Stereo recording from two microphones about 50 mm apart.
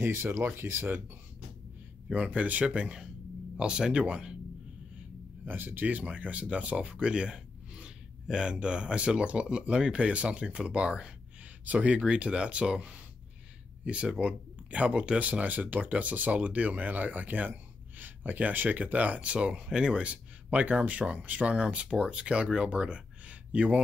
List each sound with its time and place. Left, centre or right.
0.0 s speech: right
0.4 s speech: right
2.0 s speech: right
5.4 s speech: right
5.9 s speech: right
14.0 s speech: centre
19.5 s speech: centre